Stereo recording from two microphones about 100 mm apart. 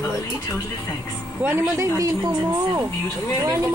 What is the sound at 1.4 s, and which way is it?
Speech, 25° right (ahead or behind).